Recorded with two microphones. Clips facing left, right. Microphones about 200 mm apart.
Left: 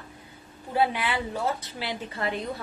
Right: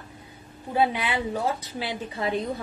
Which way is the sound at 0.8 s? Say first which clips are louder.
Right 1 dB; 20° right (ahead or behind).